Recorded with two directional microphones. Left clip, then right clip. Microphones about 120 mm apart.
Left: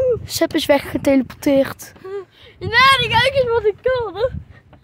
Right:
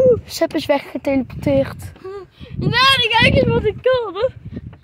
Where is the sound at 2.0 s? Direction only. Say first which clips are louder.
Left 2 dB; 25° right (ahead or behind).